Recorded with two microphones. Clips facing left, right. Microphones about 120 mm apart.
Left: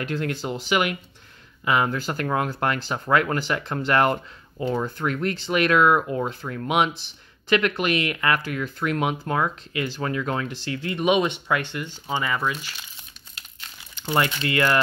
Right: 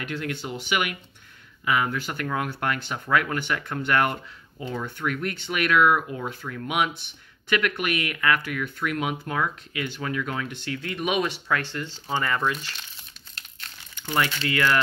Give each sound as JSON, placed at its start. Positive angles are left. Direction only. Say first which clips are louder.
{"t": 0.0, "sound": "speech", "louder": "left 4 dB", "side_deg": 35}
{"t": 14.0, "sound": "speech", "louder": "left 2 dB", "side_deg": 20}